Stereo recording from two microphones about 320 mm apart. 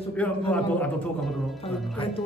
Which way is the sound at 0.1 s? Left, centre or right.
Centre.